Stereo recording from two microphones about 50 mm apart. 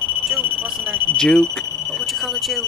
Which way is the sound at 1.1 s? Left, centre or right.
Centre.